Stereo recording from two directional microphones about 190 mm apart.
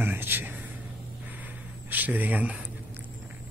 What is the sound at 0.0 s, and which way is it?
Speech, 10° right (ahead or behind).